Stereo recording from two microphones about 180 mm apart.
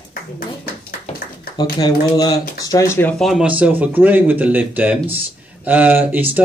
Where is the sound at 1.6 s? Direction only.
20° left (ahead or behind).